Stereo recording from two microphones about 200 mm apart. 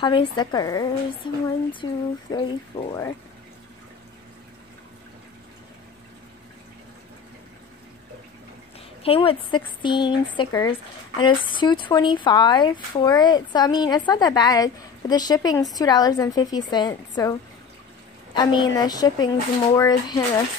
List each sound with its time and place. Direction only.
0.0 s speech: 25° left (ahead or behind)
9.0 s a woman's voice: 30° left (ahead or behind)